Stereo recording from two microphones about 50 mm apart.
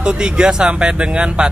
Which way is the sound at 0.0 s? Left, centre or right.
Centre.